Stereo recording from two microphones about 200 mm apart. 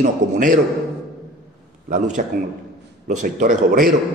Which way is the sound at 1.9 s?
40° right (ahead or behind).